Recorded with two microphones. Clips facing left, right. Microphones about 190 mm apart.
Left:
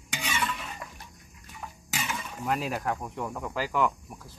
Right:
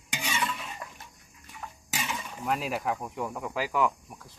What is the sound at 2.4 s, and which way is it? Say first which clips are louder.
Speech: even; centre (ahead or behind).